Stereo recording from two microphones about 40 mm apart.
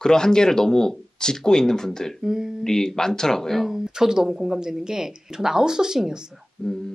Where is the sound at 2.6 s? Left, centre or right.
Centre.